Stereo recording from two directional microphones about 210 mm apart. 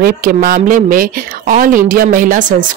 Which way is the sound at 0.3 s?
45° right (ahead or behind).